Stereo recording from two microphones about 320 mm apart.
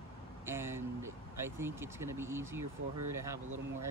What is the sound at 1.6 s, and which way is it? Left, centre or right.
Speech, centre.